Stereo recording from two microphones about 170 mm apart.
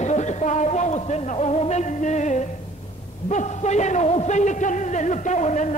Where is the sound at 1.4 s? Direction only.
40° left (ahead or behind).